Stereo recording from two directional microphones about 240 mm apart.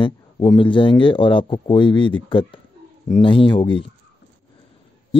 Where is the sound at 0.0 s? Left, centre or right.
Left.